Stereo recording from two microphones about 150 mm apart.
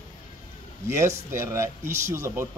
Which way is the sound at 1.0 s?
20° right (ahead or behind).